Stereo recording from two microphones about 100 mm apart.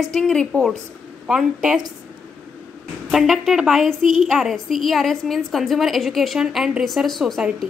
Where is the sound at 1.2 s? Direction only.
5° right (ahead or behind).